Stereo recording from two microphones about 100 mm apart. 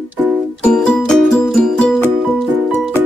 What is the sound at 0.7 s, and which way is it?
Music, 5° left (ahead or behind).